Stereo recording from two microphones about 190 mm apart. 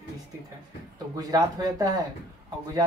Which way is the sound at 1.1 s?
20° right (ahead or behind).